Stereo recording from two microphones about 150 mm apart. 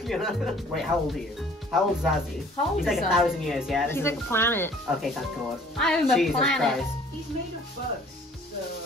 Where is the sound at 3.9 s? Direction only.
15° left (ahead or behind).